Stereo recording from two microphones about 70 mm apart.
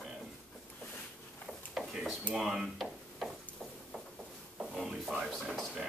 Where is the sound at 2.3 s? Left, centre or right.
Centre.